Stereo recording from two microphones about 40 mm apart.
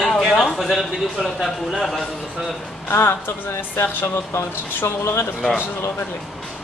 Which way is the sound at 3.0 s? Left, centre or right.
Left.